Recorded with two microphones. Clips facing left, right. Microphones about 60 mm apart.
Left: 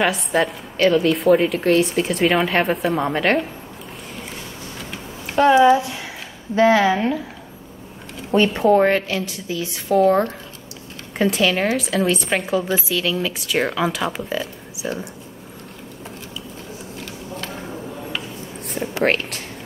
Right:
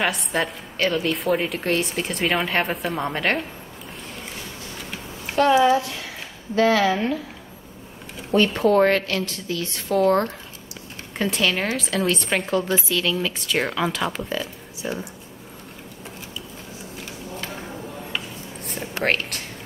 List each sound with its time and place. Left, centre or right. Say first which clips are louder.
0.0 s a woman's voice: left 4 dB; centre
5.6 s speech: left 4 dB; centre
8.3 s a woman's voice: left 3 dB; centre
19.0 s a woman's voice: left 2 dB; centre